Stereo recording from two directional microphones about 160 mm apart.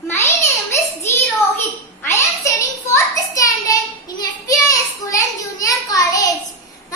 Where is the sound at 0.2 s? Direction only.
15° left (ahead or behind).